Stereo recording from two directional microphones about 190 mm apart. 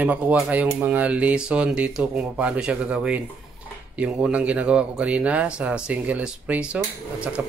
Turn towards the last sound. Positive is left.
turn(degrees=-5)  # may be behind; listen again after turning